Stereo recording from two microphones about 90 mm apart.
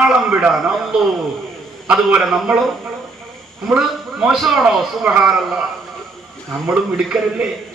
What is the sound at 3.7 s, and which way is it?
A man's voice, 10° right (ahead or behind).